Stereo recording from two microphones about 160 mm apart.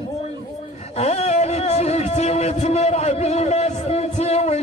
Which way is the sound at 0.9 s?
40° left (ahead or behind).